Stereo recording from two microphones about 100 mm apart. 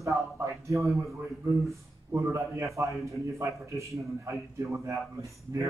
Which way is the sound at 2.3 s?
30° right (ahead or behind).